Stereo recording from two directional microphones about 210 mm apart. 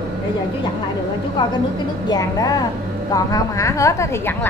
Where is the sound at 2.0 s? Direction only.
20° left (ahead or behind).